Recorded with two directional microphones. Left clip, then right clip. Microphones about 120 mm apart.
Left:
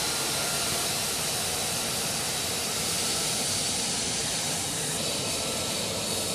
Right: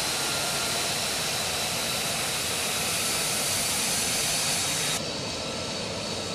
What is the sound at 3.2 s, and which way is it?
Vehicle, 20° right (ahead or behind).